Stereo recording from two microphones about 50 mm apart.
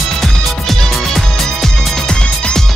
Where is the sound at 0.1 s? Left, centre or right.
Centre.